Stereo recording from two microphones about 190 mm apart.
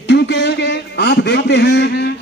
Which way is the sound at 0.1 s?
65° left (ahead or behind).